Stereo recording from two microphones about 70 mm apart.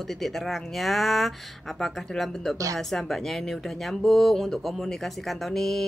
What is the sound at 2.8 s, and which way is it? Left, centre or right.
Speech, centre.